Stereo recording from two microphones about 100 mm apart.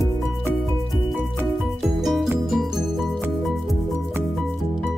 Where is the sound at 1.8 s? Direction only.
5° right (ahead or behind).